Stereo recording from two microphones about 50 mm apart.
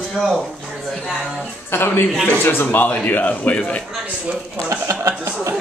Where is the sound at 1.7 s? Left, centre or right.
Left.